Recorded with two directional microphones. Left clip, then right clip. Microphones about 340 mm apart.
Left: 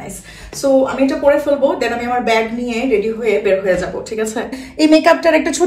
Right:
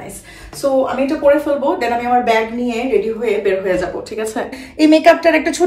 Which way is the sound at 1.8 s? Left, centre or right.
Centre.